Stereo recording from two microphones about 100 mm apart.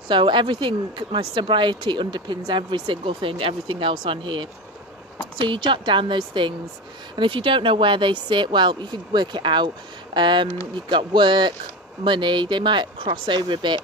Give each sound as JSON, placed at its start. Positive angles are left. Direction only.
{"t": 0.1, "sound": "speech", "side_deg": -55}